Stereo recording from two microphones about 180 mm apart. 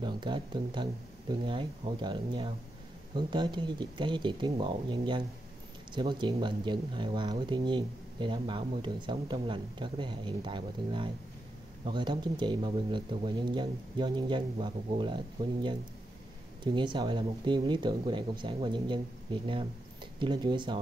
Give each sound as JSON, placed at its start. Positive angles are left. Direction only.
{"t": 0.0, "sound": "speech", "side_deg": -25}